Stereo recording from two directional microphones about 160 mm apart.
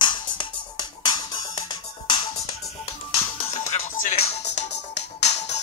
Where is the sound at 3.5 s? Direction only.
50° left (ahead or behind).